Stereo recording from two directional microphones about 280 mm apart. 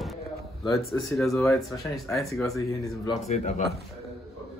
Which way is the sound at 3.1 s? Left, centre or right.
Left.